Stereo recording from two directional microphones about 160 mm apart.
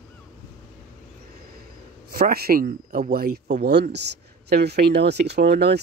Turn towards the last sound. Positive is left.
turn(degrees=-90)